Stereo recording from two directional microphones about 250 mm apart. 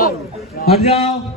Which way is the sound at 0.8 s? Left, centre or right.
Left.